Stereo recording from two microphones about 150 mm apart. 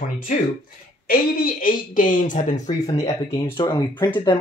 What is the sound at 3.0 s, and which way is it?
Speech, 35° left (ahead or behind).